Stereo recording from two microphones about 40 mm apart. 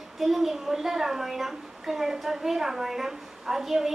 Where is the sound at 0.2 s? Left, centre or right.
Centre.